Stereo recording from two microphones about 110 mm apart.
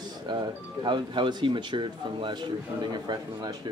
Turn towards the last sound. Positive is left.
turn(degrees=-40)  # may be behind; listen again after turning